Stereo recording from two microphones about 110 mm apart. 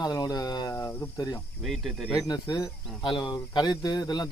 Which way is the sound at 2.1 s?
35° left (ahead or behind).